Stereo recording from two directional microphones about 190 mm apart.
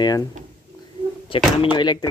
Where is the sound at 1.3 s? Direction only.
30° left (ahead or behind).